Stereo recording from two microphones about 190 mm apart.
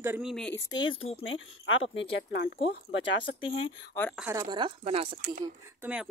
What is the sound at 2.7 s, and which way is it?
Speech, 70° left (ahead or behind).